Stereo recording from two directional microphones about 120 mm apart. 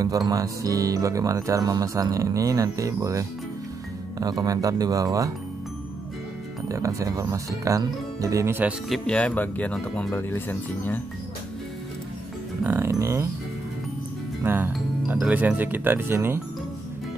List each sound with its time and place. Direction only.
0.0 s speech: 30° right (ahead or behind)
6.7 s speech: 25° right (ahead or behind)
8.8 s speech: 5° left (ahead or behind)
12.6 s speech: 20° right (ahead or behind)
14.4 s speech: 15° right (ahead or behind)